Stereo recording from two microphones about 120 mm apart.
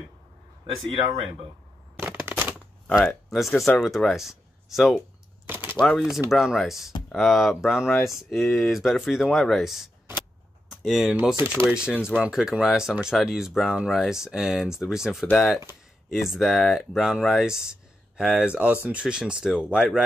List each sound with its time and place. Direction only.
2.0 s a sound: 15° right (ahead or behind)
3.3 s speech: centre (ahead or behind)
5.5 s typing: 15° right (ahead or behind)
5.8 s speech: 5° left (ahead or behind)
11.3 s speech: 20° right (ahead or behind)
11.6 s speech: 10° right (ahead or behind)